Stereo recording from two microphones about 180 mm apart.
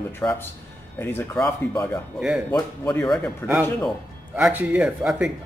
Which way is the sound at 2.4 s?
10° left (ahead or behind).